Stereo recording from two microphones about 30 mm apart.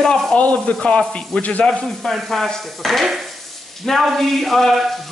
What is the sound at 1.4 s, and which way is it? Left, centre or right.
Speech, left.